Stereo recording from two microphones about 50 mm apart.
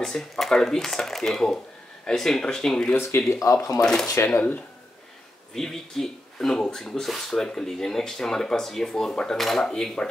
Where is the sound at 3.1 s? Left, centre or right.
Left.